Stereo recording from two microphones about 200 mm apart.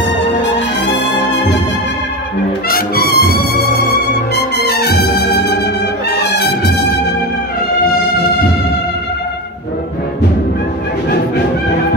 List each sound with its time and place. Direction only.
2.7 s trumpet: 50° left (ahead or behind)
4.6 s music: 55° left (ahead or behind)
6.1 s brass instrument: 55° left (ahead or behind)